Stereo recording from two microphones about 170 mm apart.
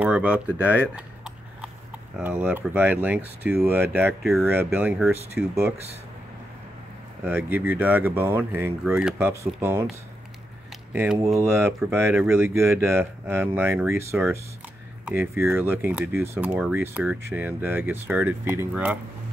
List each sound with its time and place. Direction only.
0.0 s speech: 10° right (ahead or behind)
0.9 s a sound: 5° right (ahead or behind)
2.1 s speech: 5° right (ahead or behind)
7.5 s speech: 10° right (ahead or behind)
10.9 s speech: 10° right (ahead or behind)